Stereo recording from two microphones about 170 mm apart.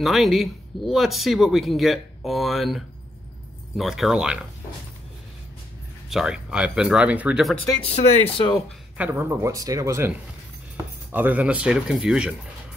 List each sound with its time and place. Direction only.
0.0 s speech: centre (ahead or behind)
6.0 s speech: 5° right (ahead or behind)
7.8 s speech: 35° left (ahead or behind)
8.9 s speech: 10° right (ahead or behind)